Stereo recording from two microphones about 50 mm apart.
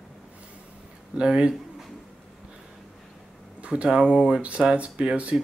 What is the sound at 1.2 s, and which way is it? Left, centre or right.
Speech, centre.